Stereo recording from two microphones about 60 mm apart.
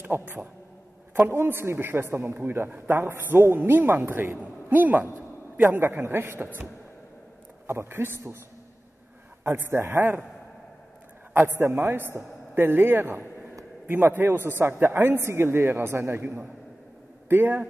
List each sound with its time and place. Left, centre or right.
0.0 s speech: right
1.2 s a man's voice: right
5.7 s a man's voice: right
7.6 s a man's voice: right
9.4 s a man's voice: right
11.4 s a man's voice: right